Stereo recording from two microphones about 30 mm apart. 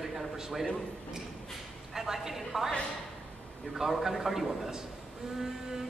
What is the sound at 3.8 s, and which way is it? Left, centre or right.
Speech, right.